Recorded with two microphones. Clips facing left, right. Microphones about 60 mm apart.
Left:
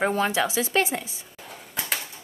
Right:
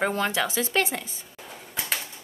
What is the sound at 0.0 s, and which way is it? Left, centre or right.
Speech, centre.